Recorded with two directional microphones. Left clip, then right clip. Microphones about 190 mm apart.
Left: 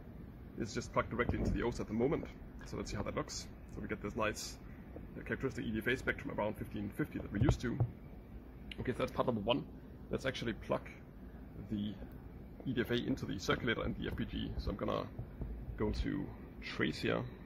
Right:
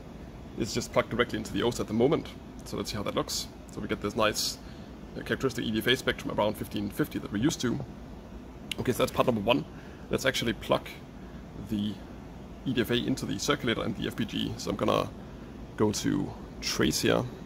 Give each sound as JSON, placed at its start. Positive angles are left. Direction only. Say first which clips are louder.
{"t": 0.6, "sound": "speech", "louder": "right 9 dB", "side_deg": 0}